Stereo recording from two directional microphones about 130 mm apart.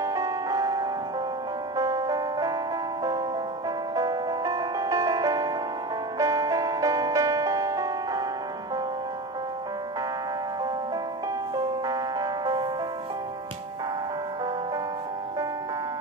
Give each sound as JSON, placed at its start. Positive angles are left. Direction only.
{"t": 0.0, "sound": "music", "side_deg": -25}
{"t": 3.9, "sound": "music", "side_deg": -30}
{"t": 11.5, "sound": "music", "side_deg": -30}